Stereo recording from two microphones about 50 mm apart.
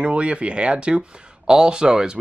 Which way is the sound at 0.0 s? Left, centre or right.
Right.